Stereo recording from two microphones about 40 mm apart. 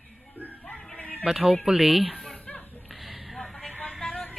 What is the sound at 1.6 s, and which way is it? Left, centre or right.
Speech, centre.